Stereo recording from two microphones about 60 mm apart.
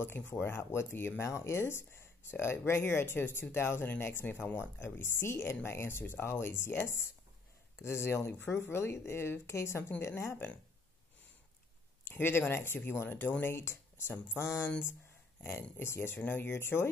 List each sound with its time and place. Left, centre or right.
0.3 s speech: left
12.1 s speech: left
15.4 s speech: left